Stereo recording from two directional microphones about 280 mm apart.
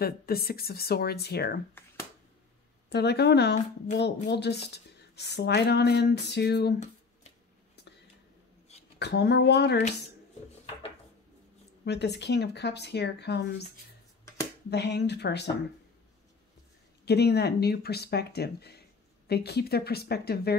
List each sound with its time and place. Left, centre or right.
0.0 s speech: left
2.9 s speech: left
8.7 s a sound: left
9.0 s speech: left
11.8 s speech: left
14.7 s speech: left
17.0 s speech: left